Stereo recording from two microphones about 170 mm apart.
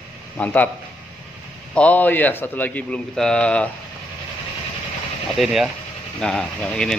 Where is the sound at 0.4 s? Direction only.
10° left (ahead or behind).